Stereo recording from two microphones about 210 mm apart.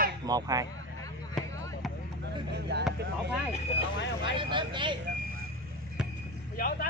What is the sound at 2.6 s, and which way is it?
Vehicle, 50° right (ahead or behind).